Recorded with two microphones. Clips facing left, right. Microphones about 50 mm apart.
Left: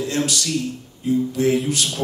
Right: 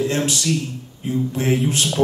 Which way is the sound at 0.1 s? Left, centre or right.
Right.